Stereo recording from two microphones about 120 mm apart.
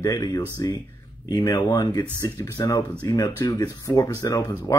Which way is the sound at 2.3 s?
25° left (ahead or behind).